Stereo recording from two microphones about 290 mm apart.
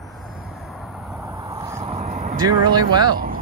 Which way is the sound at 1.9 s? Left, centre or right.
Right.